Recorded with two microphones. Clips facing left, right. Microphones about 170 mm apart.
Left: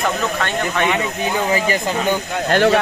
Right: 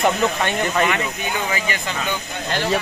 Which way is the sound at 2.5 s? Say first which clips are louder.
Left 7 dB; 65° left (ahead or behind).